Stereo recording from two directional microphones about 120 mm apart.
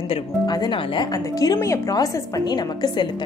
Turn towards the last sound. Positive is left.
turn(degrees=35)  # may be behind; listen again after turning